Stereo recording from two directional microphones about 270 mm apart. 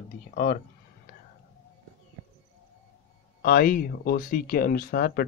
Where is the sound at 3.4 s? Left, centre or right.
Left.